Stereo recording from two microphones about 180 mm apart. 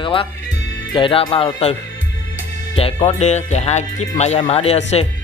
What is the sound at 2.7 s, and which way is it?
Speech, 35° left (ahead or behind).